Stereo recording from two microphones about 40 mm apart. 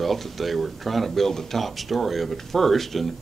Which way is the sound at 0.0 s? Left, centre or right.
Centre.